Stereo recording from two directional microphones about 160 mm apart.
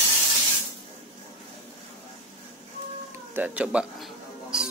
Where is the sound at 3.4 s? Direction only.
5° right (ahead or behind).